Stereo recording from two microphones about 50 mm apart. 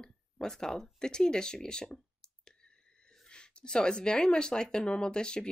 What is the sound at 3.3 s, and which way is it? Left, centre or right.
Speech, centre.